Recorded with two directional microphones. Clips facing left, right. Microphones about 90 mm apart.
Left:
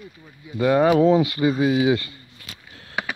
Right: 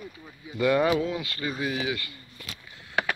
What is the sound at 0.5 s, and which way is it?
Speech, 30° left (ahead or behind).